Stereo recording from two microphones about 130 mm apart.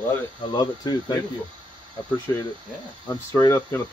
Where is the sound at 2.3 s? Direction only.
20° left (ahead or behind).